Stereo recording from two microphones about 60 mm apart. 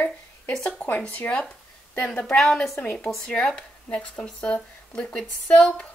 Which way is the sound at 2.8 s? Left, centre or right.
Left.